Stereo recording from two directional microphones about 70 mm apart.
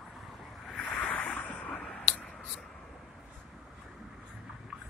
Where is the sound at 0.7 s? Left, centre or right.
Left.